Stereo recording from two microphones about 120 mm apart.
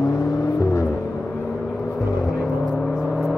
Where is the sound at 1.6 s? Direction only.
5° left (ahead or behind).